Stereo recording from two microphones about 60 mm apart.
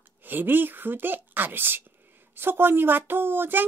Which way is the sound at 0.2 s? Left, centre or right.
Right.